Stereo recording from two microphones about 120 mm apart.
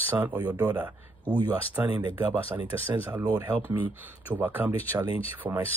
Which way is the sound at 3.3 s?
20° right (ahead or behind).